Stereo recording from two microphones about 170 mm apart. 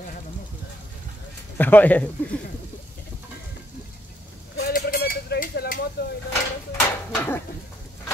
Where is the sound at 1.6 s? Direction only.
10° left (ahead or behind).